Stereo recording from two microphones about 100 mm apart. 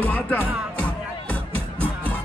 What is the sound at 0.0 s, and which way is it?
Music, 20° left (ahead or behind).